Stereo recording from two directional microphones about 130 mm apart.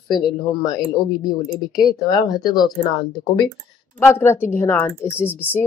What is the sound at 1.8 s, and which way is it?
Speech, 30° left (ahead or behind).